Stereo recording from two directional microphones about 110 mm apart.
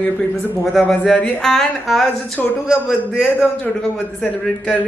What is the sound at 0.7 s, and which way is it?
Speech, 5° left (ahead or behind).